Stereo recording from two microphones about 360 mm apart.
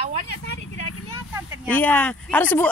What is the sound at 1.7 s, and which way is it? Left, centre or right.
Speech, centre.